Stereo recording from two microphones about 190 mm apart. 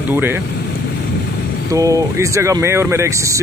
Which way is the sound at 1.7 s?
15° right (ahead or behind).